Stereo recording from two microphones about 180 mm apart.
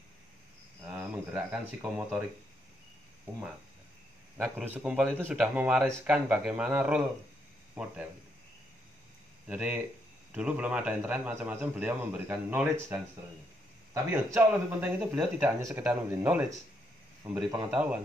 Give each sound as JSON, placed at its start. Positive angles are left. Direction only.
{"t": 0.8, "sound": "speech", "side_deg": -10}
{"t": 4.4, "sound": "speech", "side_deg": -5}
{"t": 9.5, "sound": "speech", "side_deg": -5}
{"t": 14.1, "sound": "speech", "side_deg": -10}